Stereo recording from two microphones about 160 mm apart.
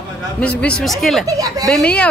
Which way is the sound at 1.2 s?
20° right (ahead or behind).